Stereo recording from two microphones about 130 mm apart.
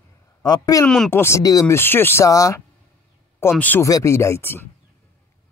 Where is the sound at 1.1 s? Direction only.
20° left (ahead or behind).